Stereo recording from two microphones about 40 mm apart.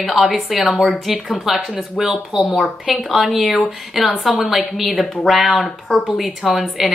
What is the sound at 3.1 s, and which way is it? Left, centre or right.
Speech, centre.